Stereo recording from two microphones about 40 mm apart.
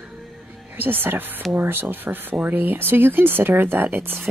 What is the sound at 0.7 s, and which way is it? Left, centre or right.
Speech, right.